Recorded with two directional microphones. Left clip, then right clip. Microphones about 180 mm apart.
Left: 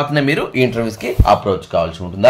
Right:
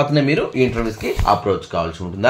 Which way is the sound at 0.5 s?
40° left (ahead or behind).